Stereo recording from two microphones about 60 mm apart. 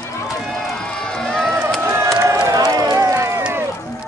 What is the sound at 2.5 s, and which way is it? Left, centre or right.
Run, right.